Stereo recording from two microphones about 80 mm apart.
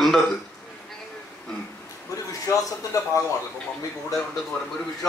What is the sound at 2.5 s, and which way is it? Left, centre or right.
Speech, left.